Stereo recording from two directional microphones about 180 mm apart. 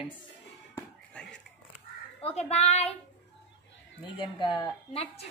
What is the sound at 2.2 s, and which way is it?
Speech, 35° left (ahead or behind).